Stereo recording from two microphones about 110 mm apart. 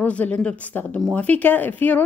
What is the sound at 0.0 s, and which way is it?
Speech, 10° left (ahead or behind).